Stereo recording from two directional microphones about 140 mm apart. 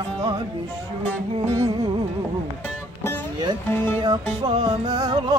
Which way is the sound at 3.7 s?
15° left (ahead or behind).